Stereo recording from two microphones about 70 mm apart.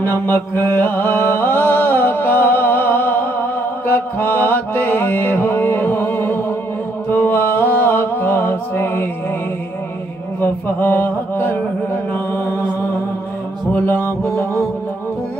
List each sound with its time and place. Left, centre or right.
0.0 s mantra: left
7.1 s music: left
10.4 s mantra: left
13.7 s music: left
14.2 s mantra: left